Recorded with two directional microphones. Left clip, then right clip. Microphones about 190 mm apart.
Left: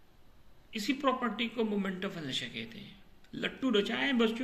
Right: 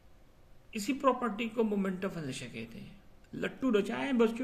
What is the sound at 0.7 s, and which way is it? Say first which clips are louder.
A woman's voice: right 1 dB; 70° right (ahead or behind).